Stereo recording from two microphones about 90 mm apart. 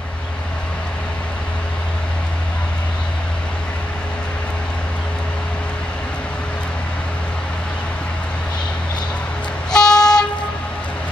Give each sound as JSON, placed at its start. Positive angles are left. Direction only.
{"t": 9.7, "sound": "train", "side_deg": 5}